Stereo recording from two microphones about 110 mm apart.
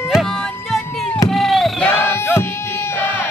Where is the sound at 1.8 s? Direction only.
20° left (ahead or behind).